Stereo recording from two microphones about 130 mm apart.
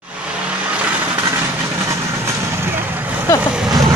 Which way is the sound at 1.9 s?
20° right (ahead or behind).